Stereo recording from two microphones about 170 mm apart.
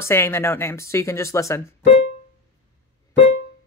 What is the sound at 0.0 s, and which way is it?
Speech, 15° left (ahead or behind).